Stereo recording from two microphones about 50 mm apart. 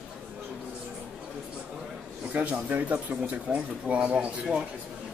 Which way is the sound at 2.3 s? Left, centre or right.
Right.